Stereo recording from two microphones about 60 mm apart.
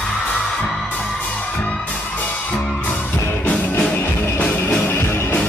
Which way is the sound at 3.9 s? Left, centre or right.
Left.